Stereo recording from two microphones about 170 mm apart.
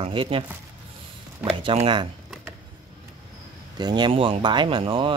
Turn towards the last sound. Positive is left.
turn(degrees=-30)  # may be behind; listen again after turning